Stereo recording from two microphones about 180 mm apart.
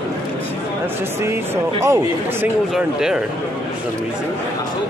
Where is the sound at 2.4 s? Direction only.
5° right (ahead or behind).